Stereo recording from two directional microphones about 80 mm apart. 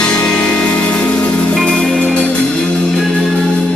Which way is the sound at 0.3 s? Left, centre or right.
Centre.